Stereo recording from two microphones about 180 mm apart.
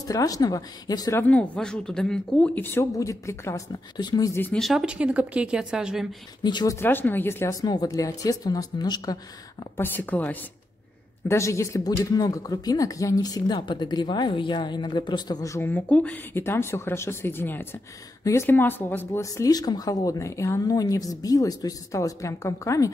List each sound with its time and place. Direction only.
0.0 s speech: 20° left (ahead or behind)
1.2 s speech: 10° left (ahead or behind)
6.4 s speech: 25° left (ahead or behind)